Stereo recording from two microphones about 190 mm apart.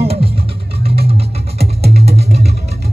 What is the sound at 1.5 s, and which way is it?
Music, 35° right (ahead or behind).